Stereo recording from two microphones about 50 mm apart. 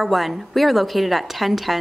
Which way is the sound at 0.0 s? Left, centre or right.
Centre.